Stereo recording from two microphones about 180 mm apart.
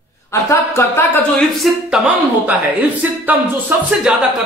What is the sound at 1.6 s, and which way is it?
Speech, centre (ahead or behind).